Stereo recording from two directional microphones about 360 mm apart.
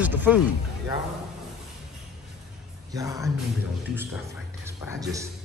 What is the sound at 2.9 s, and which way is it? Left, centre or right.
Speech, centre.